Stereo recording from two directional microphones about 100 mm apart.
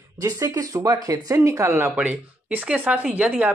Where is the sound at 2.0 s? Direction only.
15° right (ahead or behind).